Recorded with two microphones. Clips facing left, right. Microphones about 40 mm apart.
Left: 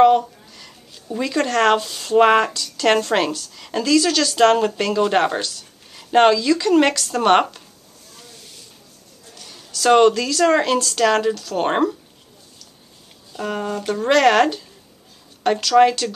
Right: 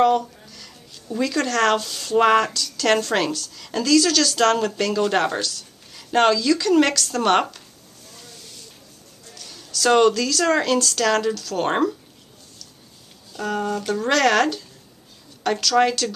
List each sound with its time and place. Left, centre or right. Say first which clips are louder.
0.0 s a sound: left 4 dB; left
2.1 s a woman's voice: left 3 dB; centre
9.3 s a woman's voice: right 2 dB; left
13.3 s a woman's voice: even; centre